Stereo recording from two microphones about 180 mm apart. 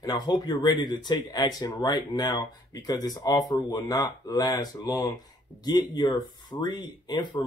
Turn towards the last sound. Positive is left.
turn(degrees=25)  # may be behind; listen again after turning